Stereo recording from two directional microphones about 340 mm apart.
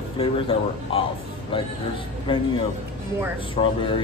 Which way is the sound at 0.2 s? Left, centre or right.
Centre.